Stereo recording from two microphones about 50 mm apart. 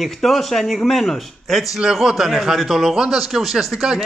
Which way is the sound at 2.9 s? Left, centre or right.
Centre.